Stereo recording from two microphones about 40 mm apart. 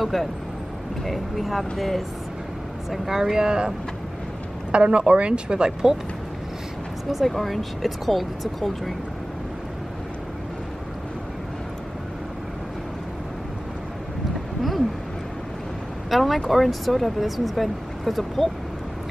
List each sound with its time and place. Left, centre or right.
0.0 s speech: centre
2.9 s speech: centre
3.3 s speech: centre
4.7 s speech: right
7.2 s speech: centre
16.1 s speech: centre